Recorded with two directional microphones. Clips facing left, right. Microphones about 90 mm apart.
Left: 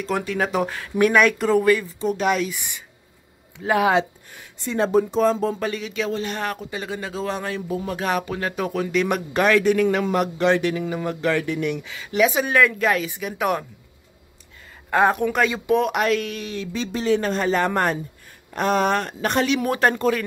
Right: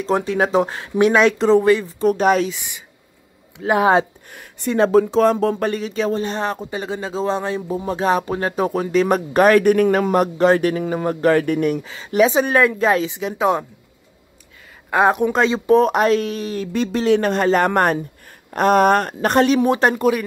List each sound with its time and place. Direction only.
0.0 s speech: 30° right (ahead or behind)
2.1 s a man's voice: 40° right (ahead or behind)
2.5 s speech: 20° right (ahead or behind)
4.3 s speech: 60° right (ahead or behind)
5.7 s a man's voice: 40° right (ahead or behind); by 13.7 s 20° right (ahead or behind)
14.9 s a man's voice: 20° right (ahead or behind); by 16.6 s 40° right (ahead or behind)
16.7 s speech: 60° right (ahead or behind)
19.6 s speech: 20° right (ahead or behind)